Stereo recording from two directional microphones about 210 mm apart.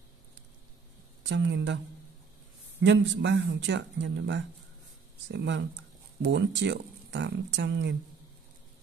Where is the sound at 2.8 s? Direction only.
60° right (ahead or behind).